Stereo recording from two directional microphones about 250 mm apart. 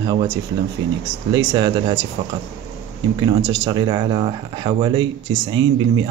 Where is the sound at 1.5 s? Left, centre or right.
Centre.